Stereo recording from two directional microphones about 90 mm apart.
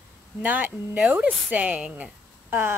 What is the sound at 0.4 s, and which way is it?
A woman's voice, 20° right (ahead or behind).